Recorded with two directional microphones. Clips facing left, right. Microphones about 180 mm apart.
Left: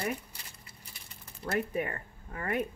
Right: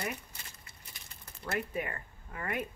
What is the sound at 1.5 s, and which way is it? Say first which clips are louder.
Speech: left 4 dB; 35° left (ahead or behind).